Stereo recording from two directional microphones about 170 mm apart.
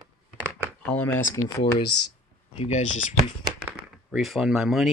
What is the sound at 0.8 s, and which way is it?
Speech, 5° left (ahead or behind).